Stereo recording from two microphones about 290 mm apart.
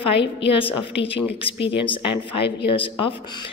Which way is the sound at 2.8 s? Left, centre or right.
Centre.